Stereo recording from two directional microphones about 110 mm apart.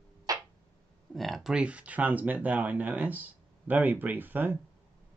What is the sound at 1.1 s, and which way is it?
Speech, centre (ahead or behind).